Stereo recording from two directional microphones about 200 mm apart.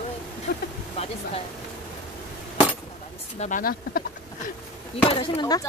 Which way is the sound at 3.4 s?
40° left (ahead or behind).